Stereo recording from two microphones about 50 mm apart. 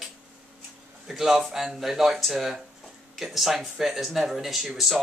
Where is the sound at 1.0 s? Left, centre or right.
Centre.